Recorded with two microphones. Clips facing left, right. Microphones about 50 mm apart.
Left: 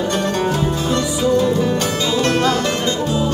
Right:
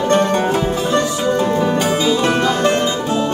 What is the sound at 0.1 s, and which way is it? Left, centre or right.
Music, right.